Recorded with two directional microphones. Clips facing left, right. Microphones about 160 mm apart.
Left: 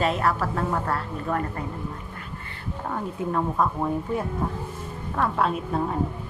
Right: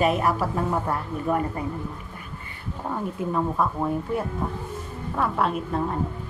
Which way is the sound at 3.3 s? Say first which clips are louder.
Even; 5° right (ahead or behind).